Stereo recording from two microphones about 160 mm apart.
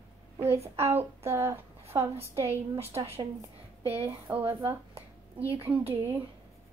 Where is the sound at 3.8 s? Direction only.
40° right (ahead or behind).